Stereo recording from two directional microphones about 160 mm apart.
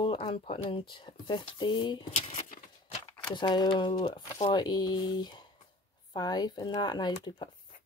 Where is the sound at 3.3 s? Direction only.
25° left (ahead or behind).